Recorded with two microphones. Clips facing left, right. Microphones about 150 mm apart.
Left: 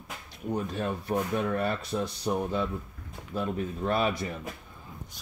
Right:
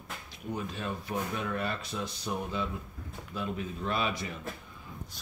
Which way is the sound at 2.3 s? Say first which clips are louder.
Left 5 dB; 40° left (ahead or behind).